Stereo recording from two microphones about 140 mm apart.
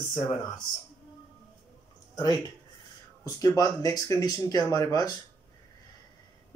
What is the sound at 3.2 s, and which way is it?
Speech, 25° left (ahead or behind).